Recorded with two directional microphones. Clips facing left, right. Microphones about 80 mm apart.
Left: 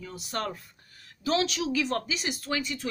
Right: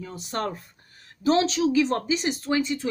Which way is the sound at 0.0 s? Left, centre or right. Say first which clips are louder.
Right 4 dB; right.